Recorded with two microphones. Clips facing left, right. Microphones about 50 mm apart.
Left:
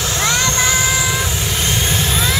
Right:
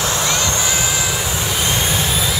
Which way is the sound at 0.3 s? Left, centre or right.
Centre.